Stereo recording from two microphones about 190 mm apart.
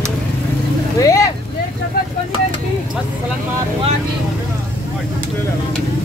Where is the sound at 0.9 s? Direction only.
15° left (ahead or behind).